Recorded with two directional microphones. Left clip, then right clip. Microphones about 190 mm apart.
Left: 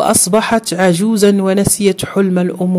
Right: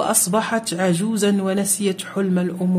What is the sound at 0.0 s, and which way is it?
Speech, 40° left (ahead or behind).